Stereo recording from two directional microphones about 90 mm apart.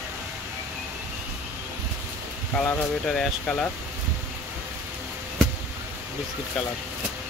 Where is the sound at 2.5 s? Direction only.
15° left (ahead or behind).